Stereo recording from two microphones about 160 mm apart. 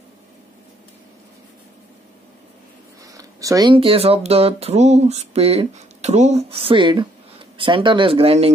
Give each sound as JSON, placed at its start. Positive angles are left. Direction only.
{"t": 3.1, "sound": "speech", "side_deg": -20}